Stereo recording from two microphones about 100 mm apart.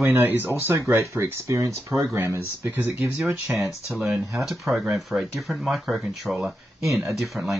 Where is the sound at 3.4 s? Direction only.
Centre (ahead or behind).